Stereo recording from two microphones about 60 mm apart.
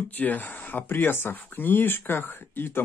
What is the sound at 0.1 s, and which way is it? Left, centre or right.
Speech, left.